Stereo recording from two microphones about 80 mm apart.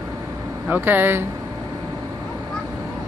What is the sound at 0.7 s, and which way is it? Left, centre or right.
Speech, right.